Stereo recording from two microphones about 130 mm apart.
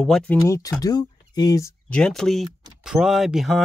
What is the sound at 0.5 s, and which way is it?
Speech, 25° left (ahead or behind).